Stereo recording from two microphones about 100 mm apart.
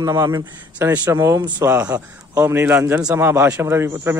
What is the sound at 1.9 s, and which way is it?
Speech, 35° right (ahead or behind).